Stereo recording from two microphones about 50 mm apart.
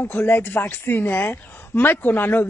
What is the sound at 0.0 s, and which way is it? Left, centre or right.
A woman's voice, left.